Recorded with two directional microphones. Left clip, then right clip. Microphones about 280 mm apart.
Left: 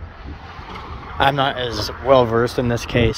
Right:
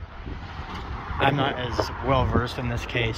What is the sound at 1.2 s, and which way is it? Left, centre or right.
Speech, centre.